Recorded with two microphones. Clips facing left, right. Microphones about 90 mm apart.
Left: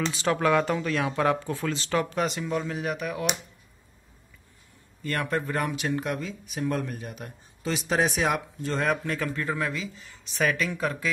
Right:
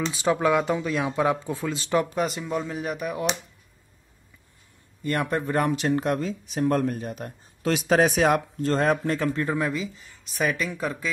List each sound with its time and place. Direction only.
0.1 s speech: 15° right (ahead or behind)
2.1 s speech: 5° right (ahead or behind)
5.0 s speech: 20° right (ahead or behind); by 7.3 s 40° right (ahead or behind)
7.6 s speech: 55° right (ahead or behind); by 9.7 s 25° right (ahead or behind)
9.7 s speech: 5° right (ahead or behind)